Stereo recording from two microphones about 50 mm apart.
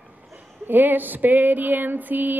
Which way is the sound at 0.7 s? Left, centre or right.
Right.